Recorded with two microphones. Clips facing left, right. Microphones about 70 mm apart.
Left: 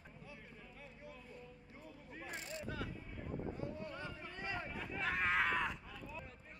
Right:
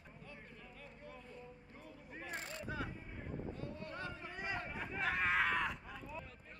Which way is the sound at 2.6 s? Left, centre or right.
Centre.